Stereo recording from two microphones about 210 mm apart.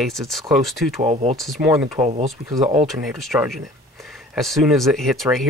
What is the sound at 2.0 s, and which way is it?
Speech, 30° right (ahead or behind).